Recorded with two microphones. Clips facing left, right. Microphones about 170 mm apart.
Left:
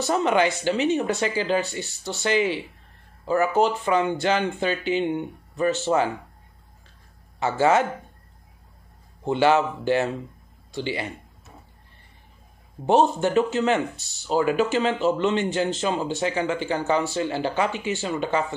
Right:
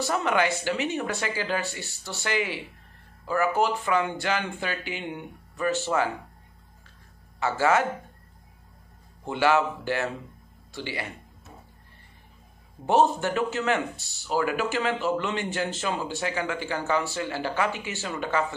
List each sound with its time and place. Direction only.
0.0 s speech: 25° left (ahead or behind)
7.3 s speech: 20° left (ahead or behind)
9.2 s speech: 25° left (ahead or behind)
12.8 s speech: 20° left (ahead or behind)